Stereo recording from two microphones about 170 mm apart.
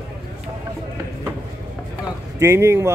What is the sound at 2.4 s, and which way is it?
Speech, 15° right (ahead or behind).